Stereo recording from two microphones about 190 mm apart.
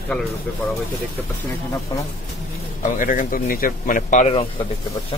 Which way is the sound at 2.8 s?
45° left (ahead or behind).